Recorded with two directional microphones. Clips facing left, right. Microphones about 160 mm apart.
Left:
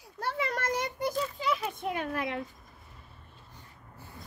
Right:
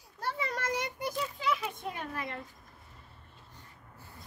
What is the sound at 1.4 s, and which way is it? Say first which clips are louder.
Children playing: left 1 dB; 40° left (ahead or behind).